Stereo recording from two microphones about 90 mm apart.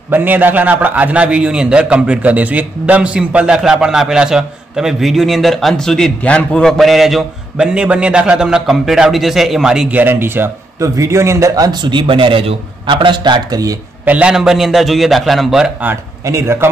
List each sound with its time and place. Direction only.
0.1 s a man's voice: 20° right (ahead or behind); by 11.8 s 45° right (ahead or behind)
11.8 s a man's voice: 65° right (ahead or behind); by 13.7 s 45° right (ahead or behind)
14.0 s a man's voice: 10° right (ahead or behind)
16.3 s a man's voice: 30° right (ahead or behind)